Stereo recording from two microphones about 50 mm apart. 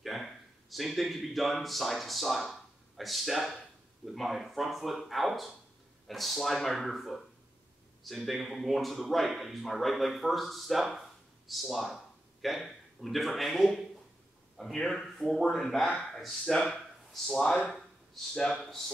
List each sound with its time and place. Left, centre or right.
0.0 s speech: centre
17.5 s speech: centre